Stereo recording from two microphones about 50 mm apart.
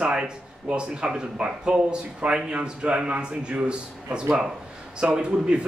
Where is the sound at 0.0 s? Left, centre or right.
Centre.